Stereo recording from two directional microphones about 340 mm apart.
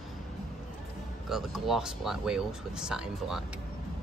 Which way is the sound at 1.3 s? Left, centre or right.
Centre.